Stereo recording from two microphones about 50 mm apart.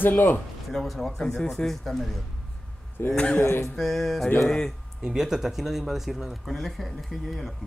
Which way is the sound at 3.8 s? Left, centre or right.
Centre.